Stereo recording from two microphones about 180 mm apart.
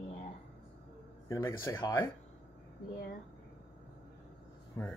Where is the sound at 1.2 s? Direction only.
15° left (ahead or behind).